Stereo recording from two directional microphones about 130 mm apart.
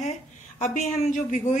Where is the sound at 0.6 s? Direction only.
70° left (ahead or behind).